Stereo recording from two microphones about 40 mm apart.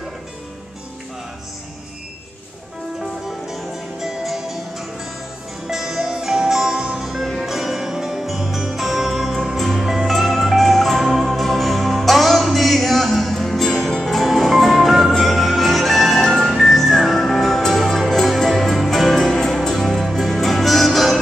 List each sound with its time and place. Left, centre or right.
3.0 s music: centre